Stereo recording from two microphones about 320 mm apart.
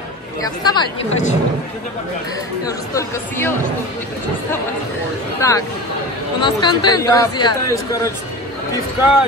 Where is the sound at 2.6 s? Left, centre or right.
Centre.